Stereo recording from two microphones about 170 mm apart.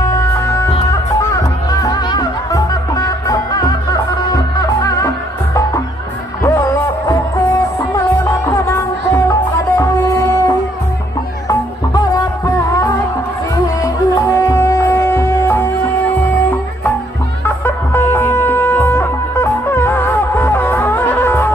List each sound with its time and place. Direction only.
0.0 s music: 15° left (ahead or behind)
1.7 s music: 20° left (ahead or behind)
17.6 s music: 15° left (ahead or behind)